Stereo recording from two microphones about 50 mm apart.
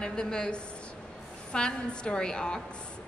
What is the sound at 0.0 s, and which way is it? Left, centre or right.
A woman's voice, centre.